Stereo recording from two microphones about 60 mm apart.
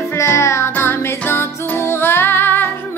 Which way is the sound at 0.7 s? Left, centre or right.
Left.